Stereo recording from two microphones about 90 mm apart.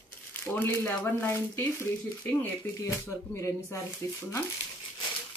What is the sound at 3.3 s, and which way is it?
Speech, 30° left (ahead or behind).